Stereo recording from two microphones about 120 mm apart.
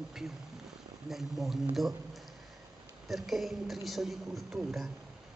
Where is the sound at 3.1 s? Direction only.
Centre (ahead or behind).